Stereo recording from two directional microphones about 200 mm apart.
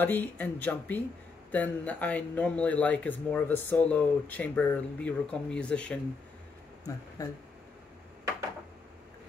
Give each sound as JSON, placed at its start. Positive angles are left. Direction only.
{"t": 0.0, "sound": "speech", "side_deg": 10}
{"t": 7.2, "sound": "speech", "side_deg": 15}